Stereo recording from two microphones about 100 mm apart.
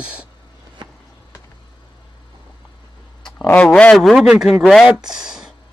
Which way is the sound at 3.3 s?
20° left (ahead or behind).